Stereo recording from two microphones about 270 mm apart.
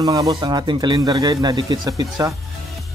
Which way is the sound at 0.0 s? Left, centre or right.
Centre.